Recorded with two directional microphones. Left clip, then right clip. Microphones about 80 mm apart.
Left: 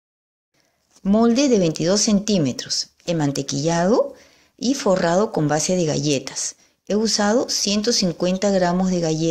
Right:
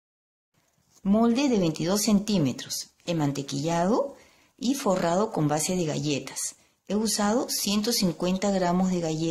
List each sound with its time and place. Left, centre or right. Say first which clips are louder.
1.2 s speech: left 8 dB; left